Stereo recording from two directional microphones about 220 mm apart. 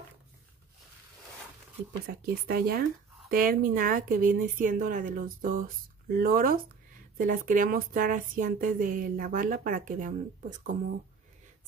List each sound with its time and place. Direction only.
2.0 s speech: 45° right (ahead or behind)